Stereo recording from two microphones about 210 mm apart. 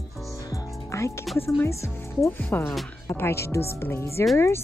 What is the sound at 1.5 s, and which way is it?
Speech, 10° left (ahead or behind).